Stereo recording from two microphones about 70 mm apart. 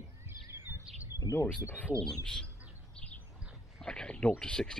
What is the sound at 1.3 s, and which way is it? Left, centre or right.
Speech, left.